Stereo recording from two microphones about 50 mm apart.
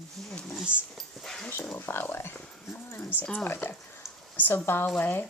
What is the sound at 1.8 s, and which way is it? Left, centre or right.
Speech, left.